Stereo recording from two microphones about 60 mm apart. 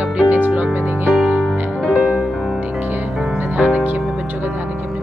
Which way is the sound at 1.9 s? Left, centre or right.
Centre.